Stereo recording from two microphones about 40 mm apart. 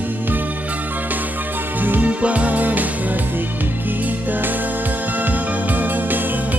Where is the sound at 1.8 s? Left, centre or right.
Right.